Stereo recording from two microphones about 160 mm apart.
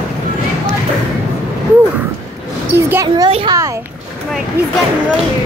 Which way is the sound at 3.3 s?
35° right (ahead or behind).